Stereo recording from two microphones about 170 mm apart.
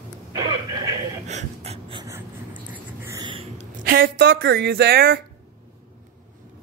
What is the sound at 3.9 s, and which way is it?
Speech, 60° right (ahead or behind).